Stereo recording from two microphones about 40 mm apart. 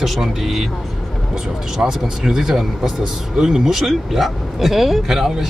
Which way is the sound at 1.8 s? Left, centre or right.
Centre.